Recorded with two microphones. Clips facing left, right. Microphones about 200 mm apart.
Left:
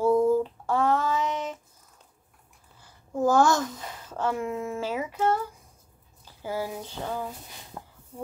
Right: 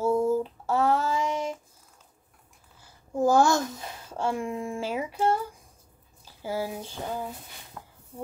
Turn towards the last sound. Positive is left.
turn(degrees=25)  # may be behind; listen again after turning